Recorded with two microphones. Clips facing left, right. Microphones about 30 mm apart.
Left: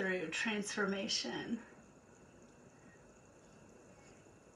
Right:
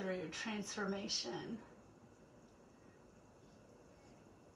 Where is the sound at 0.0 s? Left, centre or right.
Left.